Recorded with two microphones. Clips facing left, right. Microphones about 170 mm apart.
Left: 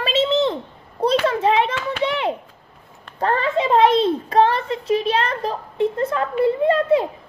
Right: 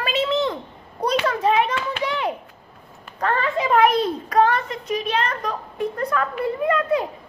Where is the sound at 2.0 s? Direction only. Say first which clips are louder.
Left 4 dB; 25° left (ahead or behind).